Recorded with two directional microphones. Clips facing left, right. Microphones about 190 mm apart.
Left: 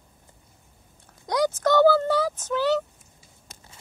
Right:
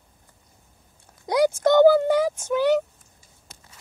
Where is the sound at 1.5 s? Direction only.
20° right (ahead or behind).